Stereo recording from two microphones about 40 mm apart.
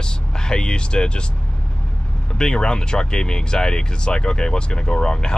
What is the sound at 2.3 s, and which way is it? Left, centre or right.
Speech, centre.